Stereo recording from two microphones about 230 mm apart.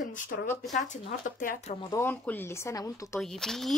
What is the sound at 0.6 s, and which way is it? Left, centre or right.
Speech, centre.